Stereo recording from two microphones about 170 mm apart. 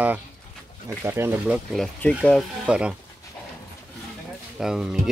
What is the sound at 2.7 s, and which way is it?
Speech, 5° right (ahead or behind).